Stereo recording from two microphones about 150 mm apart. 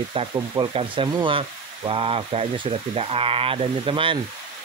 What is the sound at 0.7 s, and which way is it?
Speech, 35° right (ahead or behind).